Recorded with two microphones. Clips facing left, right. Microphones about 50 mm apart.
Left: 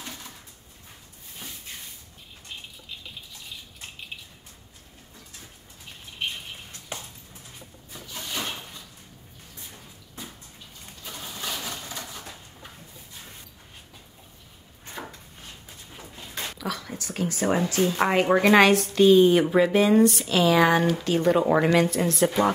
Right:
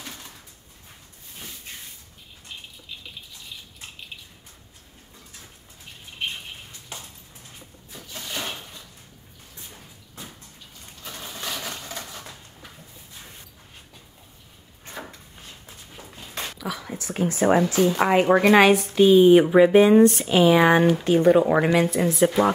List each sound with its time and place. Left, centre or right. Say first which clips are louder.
16.5 s speech: right 1 dB; centre; by 17.9 s right
17.9 s speech: right 2 dB; centre